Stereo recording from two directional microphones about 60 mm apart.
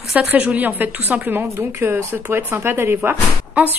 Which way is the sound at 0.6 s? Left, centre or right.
Right.